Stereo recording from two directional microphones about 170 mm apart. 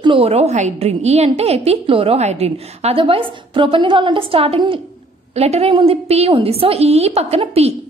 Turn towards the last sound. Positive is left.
turn(degrees=-35)  # may be behind; listen again after turning